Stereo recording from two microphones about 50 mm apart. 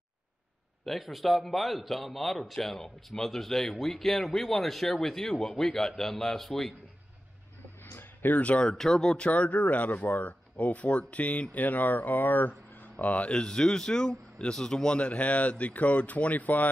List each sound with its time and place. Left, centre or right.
0.8 s speech: centre
7.8 s a sound: left
8.4 s speech: left
8.7 s speech: centre
9.1 s speech: left
12.9 s speech: left
13.3 s speech: centre; by 16.7 s left